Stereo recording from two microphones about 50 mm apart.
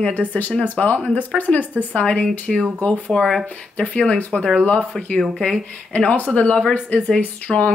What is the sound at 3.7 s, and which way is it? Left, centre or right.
Speech, left.